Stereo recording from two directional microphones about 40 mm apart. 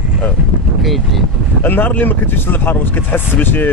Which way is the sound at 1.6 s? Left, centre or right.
Left.